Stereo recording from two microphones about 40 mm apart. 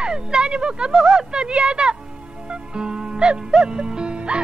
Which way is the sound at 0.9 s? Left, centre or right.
Centre.